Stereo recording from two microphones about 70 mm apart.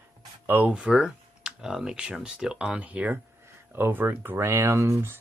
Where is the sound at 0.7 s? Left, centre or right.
Centre.